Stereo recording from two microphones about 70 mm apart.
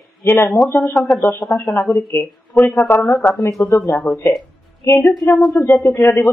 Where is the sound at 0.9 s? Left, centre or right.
Centre.